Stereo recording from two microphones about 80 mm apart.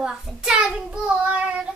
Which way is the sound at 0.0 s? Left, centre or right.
Centre.